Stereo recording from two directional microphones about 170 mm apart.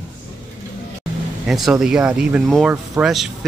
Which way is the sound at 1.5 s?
Centre (ahead or behind).